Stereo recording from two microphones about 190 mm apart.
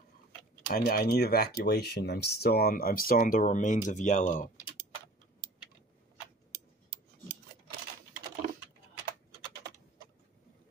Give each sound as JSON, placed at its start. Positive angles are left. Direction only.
{"t": 0.7, "sound": "speech", "side_deg": 50}